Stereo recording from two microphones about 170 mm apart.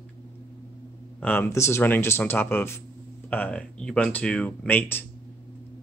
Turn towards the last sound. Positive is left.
turn(degrees=10)  # may be behind; listen again after turning